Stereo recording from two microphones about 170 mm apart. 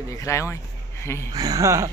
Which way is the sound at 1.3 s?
20° right (ahead or behind).